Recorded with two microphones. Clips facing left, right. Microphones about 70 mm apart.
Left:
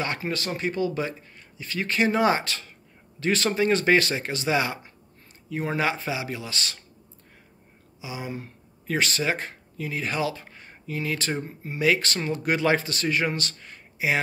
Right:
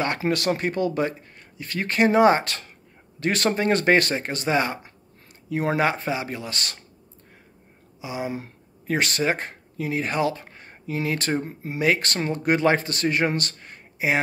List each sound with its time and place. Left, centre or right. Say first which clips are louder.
0.2 s speech: right 5 dB; right
5.5 s speech: right 5 dB; right
5.8 s speech: right 3 dB; right
8.0 s speech: right 5 dB; right
9.8 s speech: right 4 dB; right
10.6 s a sound: right 4 dB; right
11.4 s speech: right 4 dB; right
11.8 s speech: right 1 dB; right